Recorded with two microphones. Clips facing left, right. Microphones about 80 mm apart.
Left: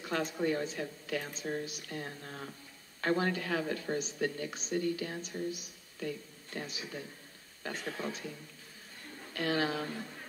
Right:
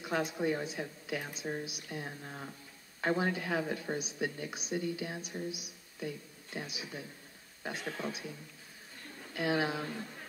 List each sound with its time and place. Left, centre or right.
0.0 s speech: centre
9.3 s speech: centre